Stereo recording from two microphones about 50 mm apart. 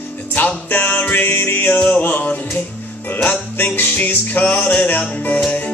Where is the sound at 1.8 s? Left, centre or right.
Left.